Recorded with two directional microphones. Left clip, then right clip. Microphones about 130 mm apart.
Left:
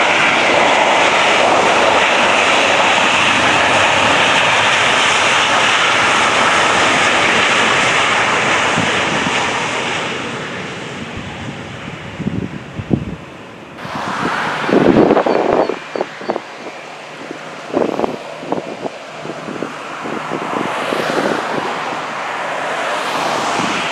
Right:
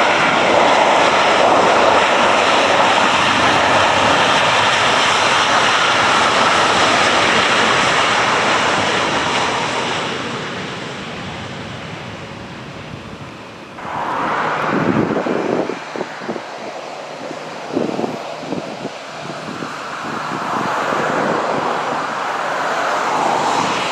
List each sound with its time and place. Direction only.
0.0 s vehicle: 5° left (ahead or behind)
13.9 s vehicle: 45° left (ahead or behind)
20.2 s vehicle: centre (ahead or behind)
22.7 s vehicle: 15° left (ahead or behind)
23.2 s vehicle: 45° left (ahead or behind)